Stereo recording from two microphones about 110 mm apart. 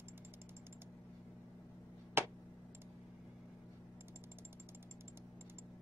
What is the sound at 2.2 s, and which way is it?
Tick, 20° right (ahead or behind).